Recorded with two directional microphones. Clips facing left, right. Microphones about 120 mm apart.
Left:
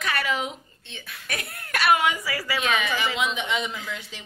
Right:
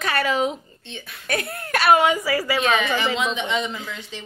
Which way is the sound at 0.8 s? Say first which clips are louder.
Right 2 dB; centre (ahead or behind).